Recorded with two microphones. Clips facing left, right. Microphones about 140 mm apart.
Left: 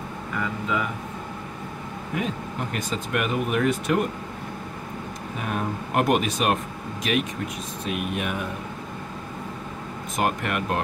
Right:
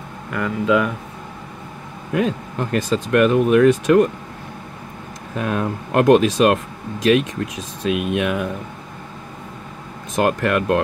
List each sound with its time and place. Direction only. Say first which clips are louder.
0.3 s speech: right 9 dB; 85° right
2.1 s speech: right 8 dB; 90° right
5.4 s speech: right 6 dB; 90° right
10.1 s speech: right 7 dB; 90° right